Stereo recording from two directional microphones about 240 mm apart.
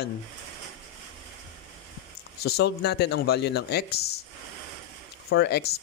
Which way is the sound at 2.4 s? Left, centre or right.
Left.